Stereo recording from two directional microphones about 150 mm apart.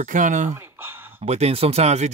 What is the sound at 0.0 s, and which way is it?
Speech, 55° right (ahead or behind).